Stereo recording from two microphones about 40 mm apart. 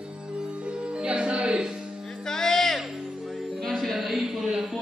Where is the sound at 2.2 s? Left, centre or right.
Centre.